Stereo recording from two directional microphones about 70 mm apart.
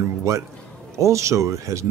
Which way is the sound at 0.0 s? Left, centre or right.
Right.